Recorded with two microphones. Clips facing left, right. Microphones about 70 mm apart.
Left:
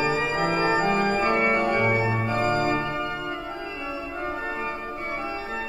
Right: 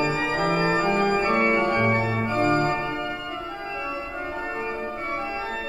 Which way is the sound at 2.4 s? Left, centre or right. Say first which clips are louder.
Right 3 dB; right.